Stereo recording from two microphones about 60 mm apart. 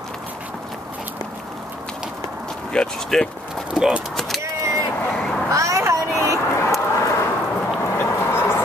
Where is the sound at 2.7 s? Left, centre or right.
Centre.